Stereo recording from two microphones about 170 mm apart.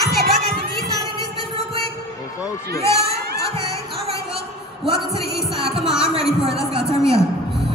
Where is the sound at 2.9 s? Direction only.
70° right (ahead or behind).